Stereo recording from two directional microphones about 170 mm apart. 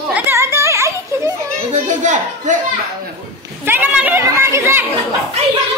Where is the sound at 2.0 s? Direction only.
45° right (ahead or behind).